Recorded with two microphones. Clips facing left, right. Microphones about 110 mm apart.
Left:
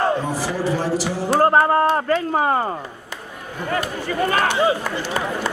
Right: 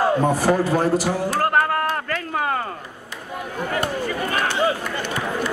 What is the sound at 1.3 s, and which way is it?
Speech, 25° left (ahead or behind).